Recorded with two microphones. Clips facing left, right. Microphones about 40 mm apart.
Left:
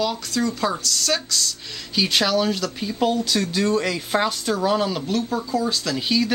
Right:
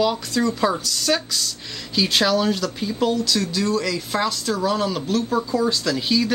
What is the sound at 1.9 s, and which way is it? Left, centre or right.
Speech, centre.